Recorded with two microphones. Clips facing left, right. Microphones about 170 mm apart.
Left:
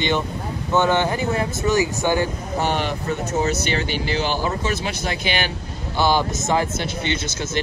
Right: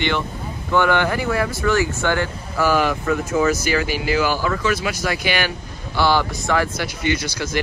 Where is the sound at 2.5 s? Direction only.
90° right.